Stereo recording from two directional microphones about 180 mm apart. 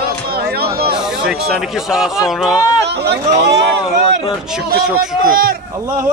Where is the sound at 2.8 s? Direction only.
70° right (ahead or behind).